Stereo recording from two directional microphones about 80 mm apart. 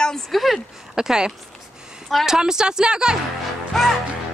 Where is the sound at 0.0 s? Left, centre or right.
Centre.